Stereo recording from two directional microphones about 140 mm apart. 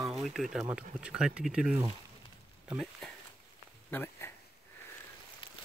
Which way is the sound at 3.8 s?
15° left (ahead or behind).